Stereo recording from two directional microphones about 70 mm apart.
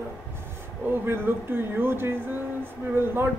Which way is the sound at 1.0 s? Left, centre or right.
Right.